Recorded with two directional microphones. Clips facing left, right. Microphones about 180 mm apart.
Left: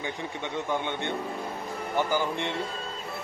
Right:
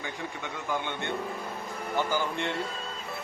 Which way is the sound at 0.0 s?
20° left (ahead or behind).